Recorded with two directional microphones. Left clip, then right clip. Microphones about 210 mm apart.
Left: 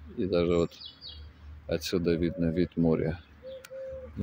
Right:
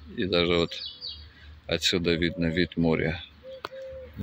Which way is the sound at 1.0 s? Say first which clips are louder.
Right 7 dB; 55° left (ahead or behind).